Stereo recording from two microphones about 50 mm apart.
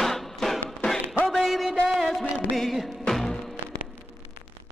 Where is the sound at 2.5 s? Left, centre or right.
Centre.